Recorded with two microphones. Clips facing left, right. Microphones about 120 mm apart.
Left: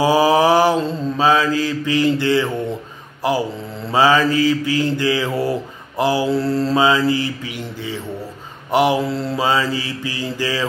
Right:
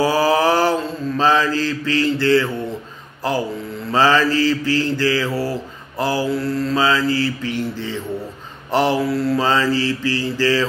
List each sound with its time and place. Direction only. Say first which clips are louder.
0.0 s mantra: left 2 dB; 15° left (ahead or behind)
9.0 s mantra: right 3 dB; 25° left (ahead or behind)
9.4 s mantra: right 1 dB; 15° left (ahead or behind)